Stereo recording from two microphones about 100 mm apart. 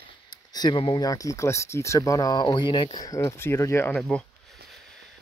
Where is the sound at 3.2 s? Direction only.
25° left (ahead or behind).